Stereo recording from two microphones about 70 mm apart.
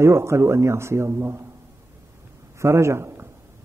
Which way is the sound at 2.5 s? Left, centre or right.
Right.